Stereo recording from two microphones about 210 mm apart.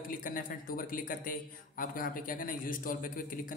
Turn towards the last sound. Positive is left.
turn(degrees=40)  # may be behind; listen again after turning